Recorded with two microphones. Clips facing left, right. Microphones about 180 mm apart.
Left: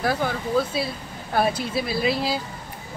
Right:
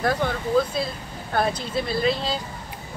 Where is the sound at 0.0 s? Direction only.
5° left (ahead or behind).